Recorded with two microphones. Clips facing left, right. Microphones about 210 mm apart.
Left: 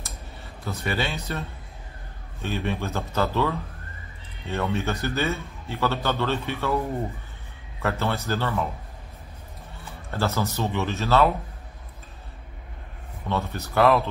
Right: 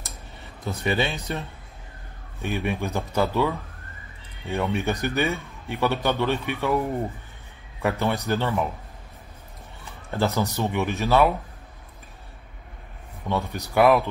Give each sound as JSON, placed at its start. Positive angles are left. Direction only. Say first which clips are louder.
{"t": 0.7, "sound": "a man's voice", "louder": "right 3 dB", "side_deg": -20}
{"t": 2.4, "sound": "a man's voice", "louder": "right 1 dB", "side_deg": -15}
{"t": 7.8, "sound": "a man's voice", "louder": "right 2 dB", "side_deg": -15}
{"t": 10.1, "sound": "a man's voice", "louder": "right 2 dB", "side_deg": -15}
{"t": 13.3, "sound": "a man's voice", "louder": "right 1 dB", "side_deg": -15}